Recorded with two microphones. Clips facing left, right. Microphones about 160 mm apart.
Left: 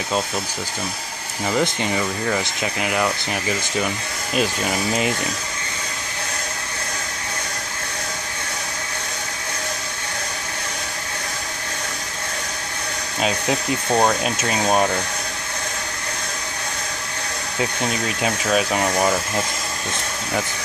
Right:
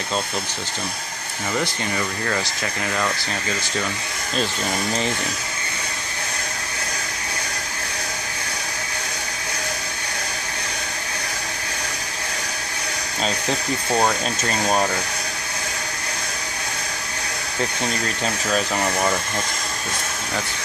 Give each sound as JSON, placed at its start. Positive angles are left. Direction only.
{"t": 1.5, "sound": "speech", "side_deg": 20}
{"t": 13.2, "sound": "speech", "side_deg": 10}
{"t": 17.6, "sound": "speech", "side_deg": 5}